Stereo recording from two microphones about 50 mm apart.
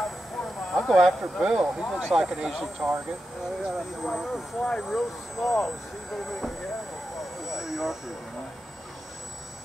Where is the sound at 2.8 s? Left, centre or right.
Right.